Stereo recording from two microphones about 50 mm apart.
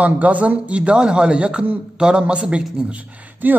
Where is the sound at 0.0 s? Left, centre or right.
Right.